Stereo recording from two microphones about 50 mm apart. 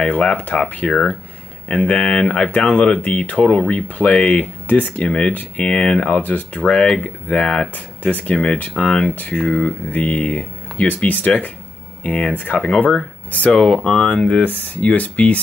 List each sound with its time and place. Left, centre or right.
0.0 s speech: left
5.3 s speech: left
5.7 s speech: centre
6.7 s speech: centre
7.0 s speech: left
9.8 s speech: left
14.4 s speech: left
14.8 s speech: left